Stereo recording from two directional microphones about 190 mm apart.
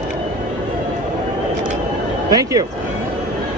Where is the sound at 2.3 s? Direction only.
20° right (ahead or behind).